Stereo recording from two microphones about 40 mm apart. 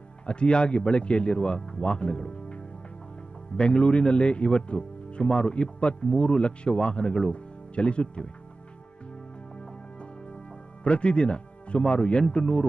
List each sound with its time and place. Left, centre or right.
0.3 s a man's voice: left
10.8 s a man's voice: left